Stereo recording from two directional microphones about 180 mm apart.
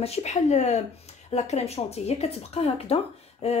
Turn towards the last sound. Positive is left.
turn(degrees=35)  # may be behind; listen again after turning